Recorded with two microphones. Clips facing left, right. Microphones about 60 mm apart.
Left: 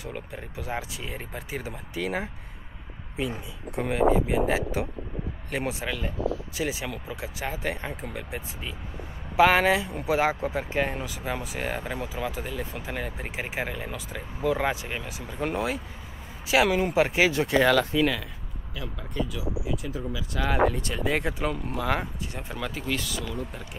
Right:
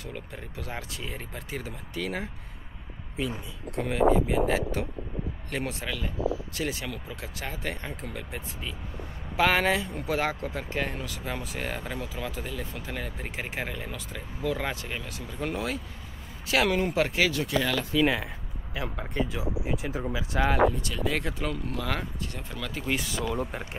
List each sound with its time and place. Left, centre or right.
0.0 s speech: centre
18.8 s speech: right
20.8 s speech: left
23.1 s speech: right